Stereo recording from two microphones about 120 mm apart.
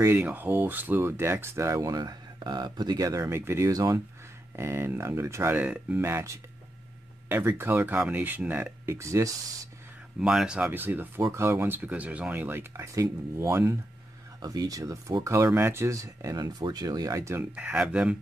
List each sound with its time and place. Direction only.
0.0 s speech: 15° right (ahead or behind)
10.2 s speech: 5° right (ahead or behind); by 17.4 s 25° right (ahead or behind)
17.4 s speech: 10° right (ahead or behind)